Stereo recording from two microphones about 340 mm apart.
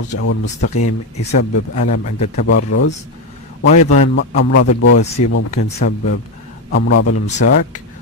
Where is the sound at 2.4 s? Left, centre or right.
Left.